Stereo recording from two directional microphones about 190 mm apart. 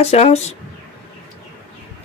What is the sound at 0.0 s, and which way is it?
Speech, 35° left (ahead or behind).